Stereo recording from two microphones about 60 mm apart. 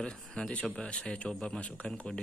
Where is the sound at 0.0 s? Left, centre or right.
Centre.